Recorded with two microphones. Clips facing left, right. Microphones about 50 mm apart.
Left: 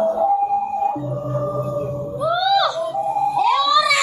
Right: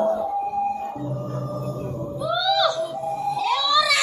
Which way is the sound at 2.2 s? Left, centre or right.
Centre.